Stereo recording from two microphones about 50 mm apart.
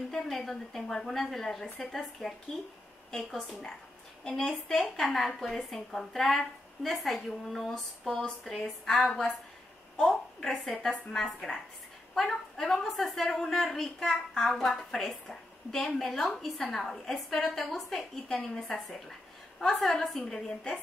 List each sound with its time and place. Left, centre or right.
0.1 s a woman's voice: centre
4.2 s a woman's voice: centre
20.4 s a woman's voice: centre